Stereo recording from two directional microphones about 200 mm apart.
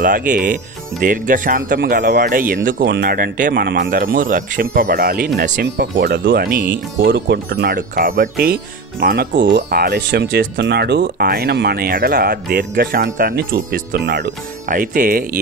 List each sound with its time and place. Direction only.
0.0 s speech: 40° right (ahead or behind); by 14.3 s 60° right (ahead or behind)
14.7 s speech: 45° right (ahead or behind)